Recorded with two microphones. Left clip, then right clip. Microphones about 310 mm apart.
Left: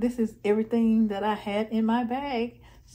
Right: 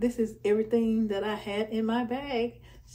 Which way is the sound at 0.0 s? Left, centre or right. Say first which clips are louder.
Even; centre.